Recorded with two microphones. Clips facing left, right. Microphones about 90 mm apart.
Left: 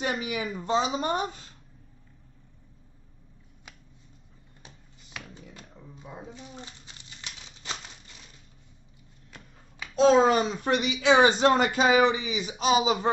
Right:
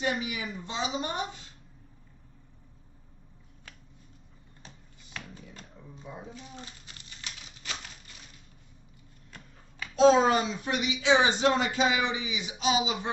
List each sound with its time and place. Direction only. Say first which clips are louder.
0.0 s speech: left 2 dB; 40° left (ahead or behind)
6.6 s a sound: left 1 dB; 20° left (ahead or behind)
10.2 s speech: left 3 dB; 45° left (ahead or behind)